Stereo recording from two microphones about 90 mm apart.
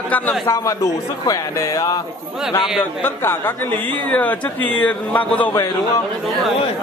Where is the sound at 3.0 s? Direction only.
25° left (ahead or behind).